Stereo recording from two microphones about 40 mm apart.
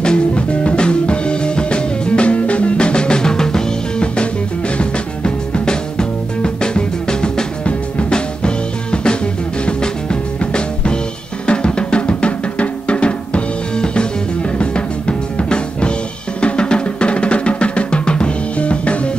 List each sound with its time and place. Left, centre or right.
0.0 s music: left
4.7 s music: left